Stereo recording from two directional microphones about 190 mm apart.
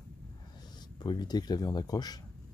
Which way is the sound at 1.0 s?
20° left (ahead or behind).